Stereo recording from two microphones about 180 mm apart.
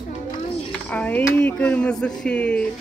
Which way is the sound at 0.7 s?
10° left (ahead or behind).